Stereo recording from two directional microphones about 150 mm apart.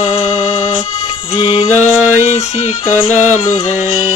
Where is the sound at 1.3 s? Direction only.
30° left (ahead or behind).